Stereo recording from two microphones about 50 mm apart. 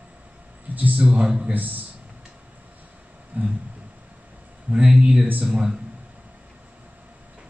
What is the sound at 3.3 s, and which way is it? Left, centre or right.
Speech, right.